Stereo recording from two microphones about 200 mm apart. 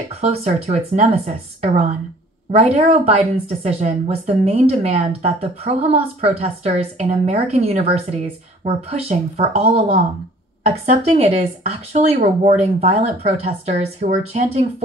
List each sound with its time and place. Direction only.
0.1 s a woman's voice: 35° right (ahead or behind)